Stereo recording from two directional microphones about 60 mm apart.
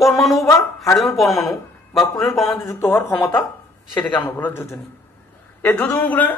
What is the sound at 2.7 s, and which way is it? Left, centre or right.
Speech, left.